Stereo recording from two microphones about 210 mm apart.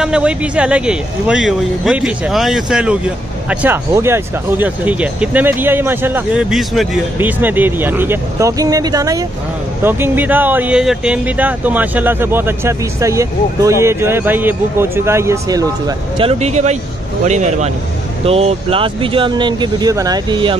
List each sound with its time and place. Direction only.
0.0 s a man's voice: 5° right (ahead or behind)
16.2 s speech: 30° right (ahead or behind)